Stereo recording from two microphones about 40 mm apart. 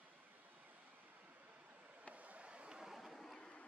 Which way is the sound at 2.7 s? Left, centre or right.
Centre.